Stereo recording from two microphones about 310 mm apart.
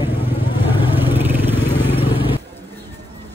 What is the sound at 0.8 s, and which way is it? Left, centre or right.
Vehicle, centre.